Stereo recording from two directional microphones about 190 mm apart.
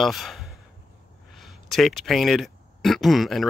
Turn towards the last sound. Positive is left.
turn(degrees=0)  # may be behind; listen again after turning